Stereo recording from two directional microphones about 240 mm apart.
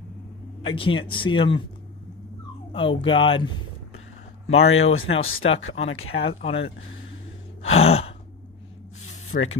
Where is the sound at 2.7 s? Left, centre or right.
Left.